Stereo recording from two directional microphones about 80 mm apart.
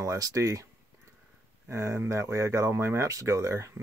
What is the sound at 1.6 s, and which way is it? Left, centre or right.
Speech, right.